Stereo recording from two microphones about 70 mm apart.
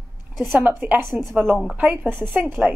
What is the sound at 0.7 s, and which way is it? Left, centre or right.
Speech, right.